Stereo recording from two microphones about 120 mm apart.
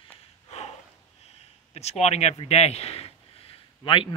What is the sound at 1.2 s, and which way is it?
Speech, 60° left (ahead or behind).